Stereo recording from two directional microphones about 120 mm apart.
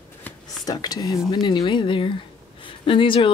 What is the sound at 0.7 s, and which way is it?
Speech, 35° left (ahead or behind).